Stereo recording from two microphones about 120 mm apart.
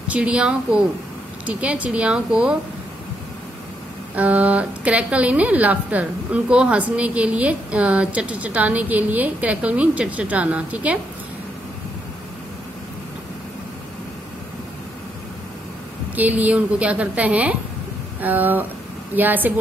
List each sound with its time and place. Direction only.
0.1 s a woman's voice: 10° right (ahead or behind)
4.1 s a woman's voice: 10° right (ahead or behind)
16.2 s a woman's voice: 15° right (ahead or behind)